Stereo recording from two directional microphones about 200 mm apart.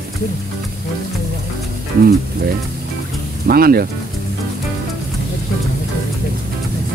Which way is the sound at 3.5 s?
50° right (ahead or behind).